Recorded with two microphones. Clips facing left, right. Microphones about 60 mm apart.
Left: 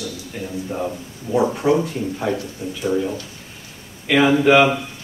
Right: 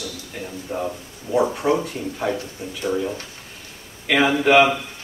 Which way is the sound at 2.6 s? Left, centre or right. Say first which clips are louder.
Left 4 dB; right.